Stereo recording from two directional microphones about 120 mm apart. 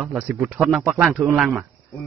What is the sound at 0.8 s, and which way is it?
Speech, 15° right (ahead or behind).